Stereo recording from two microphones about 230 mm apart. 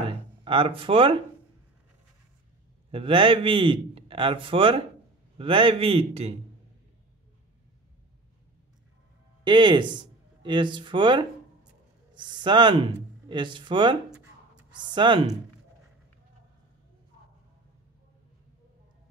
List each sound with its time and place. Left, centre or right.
0.0 s a sound: right
2.9 s a man's voice: right
9.4 s speech: right